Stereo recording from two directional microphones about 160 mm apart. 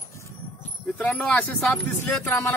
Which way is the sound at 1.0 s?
5° left (ahead or behind).